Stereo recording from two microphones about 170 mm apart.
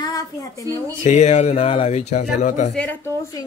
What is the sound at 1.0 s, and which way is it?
Speech, 45° left (ahead or behind).